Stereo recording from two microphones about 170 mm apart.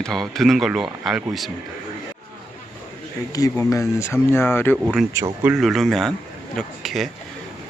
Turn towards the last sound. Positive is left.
turn(degrees=0)  # may be behind; listen again after turning